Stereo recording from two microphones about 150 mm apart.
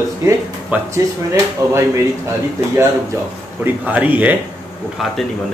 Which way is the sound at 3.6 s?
10° right (ahead or behind).